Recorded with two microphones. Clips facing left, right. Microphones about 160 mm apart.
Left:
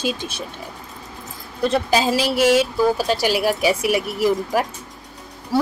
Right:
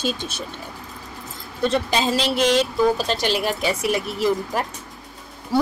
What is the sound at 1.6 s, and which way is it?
A woman's voice, 5° left (ahead or behind).